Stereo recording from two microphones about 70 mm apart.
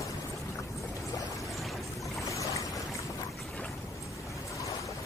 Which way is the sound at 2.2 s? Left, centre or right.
Left.